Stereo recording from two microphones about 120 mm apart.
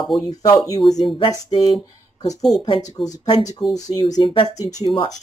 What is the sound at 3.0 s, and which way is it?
Speech, 35° left (ahead or behind).